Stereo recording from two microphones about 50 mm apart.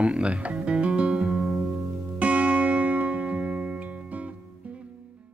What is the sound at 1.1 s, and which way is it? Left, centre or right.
Music, centre.